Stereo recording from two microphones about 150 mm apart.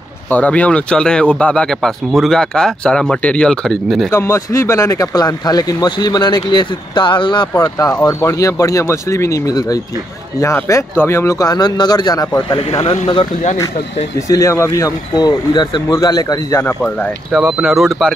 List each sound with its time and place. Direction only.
0.3 s speech: 10° left (ahead or behind)
4.1 s speech: 20° left (ahead or behind)
12.8 s speech: 35° left (ahead or behind)
14.3 s speech: 20° left (ahead or behind)
16.6 s speech: 10° left (ahead or behind)
17.3 s speech: 5° right (ahead or behind)